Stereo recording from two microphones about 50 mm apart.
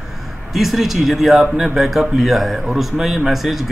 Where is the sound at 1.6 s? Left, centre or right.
Centre.